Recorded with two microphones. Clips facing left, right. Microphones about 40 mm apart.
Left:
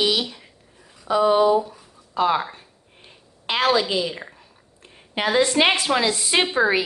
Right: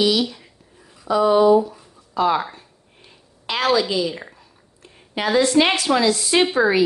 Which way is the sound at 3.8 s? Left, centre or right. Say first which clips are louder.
Right 2 dB; centre.